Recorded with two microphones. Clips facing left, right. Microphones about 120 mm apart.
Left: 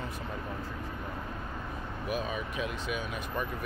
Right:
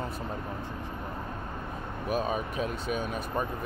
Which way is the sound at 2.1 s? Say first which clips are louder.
Right 5 dB; 40° right (ahead or behind).